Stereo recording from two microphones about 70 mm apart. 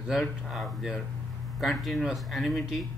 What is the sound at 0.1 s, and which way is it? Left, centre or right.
A man's voice, centre.